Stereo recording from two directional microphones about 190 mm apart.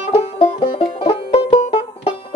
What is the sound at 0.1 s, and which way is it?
Music, 30° left (ahead or behind).